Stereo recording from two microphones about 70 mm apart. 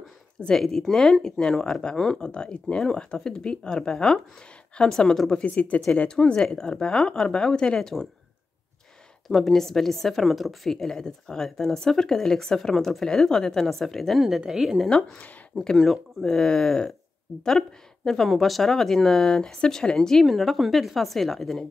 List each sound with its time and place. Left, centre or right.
0.5 s speech: centre
5.4 s speech: centre
9.3 s a woman's voice: centre
14.9 s speech: centre
15.5 s a woman's voice: centre